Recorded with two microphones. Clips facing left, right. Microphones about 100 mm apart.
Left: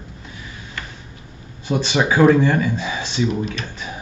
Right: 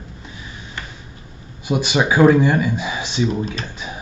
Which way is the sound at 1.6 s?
10° right (ahead or behind).